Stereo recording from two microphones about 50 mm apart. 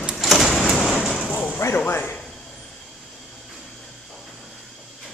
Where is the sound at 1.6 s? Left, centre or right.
Left.